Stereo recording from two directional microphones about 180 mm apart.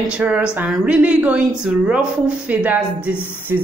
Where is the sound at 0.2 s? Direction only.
10° right (ahead or behind).